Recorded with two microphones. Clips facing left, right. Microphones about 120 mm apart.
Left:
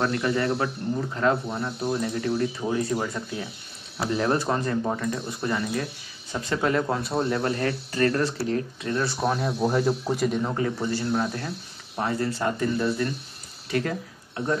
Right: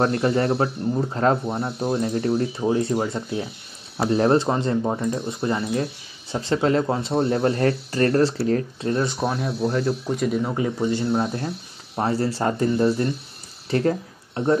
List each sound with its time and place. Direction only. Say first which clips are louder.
0.0 s speech: right 4 dB; 35° right (ahead or behind)
4.0 s speech: right 6 dB; 35° right (ahead or behind)
8.9 s speech: right 3 dB; 20° right (ahead or behind)
9.2 s speech: even; centre (ahead or behind)
9.6 s speech: right 1 dB; 15° left (ahead or behind)
10.1 s speech: right 2 dB; centre (ahead or behind)
10.5 s speech: right 3 dB; 20° right (ahead or behind)